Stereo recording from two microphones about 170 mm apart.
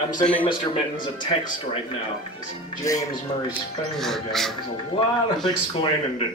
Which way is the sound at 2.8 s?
20° left (ahead or behind).